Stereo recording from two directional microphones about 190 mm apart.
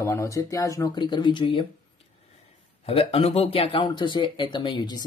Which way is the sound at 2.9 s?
30° left (ahead or behind).